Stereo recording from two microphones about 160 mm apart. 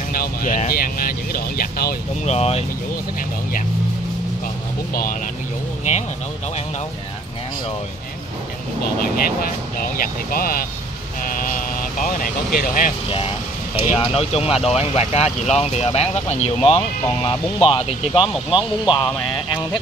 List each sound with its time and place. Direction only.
0.1 s speech: 65° left (ahead or behind)
2.2 s speech: 40° left (ahead or behind)
4.9 s speech: 65° left (ahead or behind)
9.9 s speech: 65° left (ahead or behind)
13.9 s speech: 35° left (ahead or behind)